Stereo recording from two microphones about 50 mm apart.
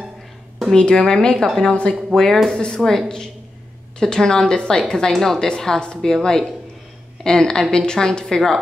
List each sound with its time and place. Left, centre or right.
0.7 s a woman's voice: centre
2.1 s a woman's voice: centre
4.0 s a woman's voice: centre